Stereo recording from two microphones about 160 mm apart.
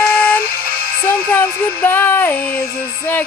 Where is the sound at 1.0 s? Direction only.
15° left (ahead or behind).